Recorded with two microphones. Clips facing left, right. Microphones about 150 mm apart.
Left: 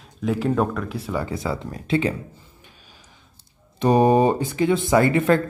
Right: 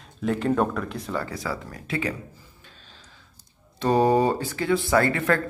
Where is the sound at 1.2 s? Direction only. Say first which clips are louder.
Left 4 dB; 20° left (ahead or behind).